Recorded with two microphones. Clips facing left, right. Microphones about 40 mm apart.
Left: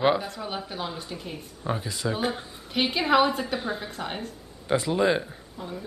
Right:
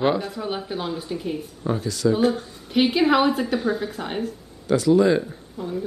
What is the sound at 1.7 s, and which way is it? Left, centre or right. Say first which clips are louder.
Speech: right 7 dB; centre.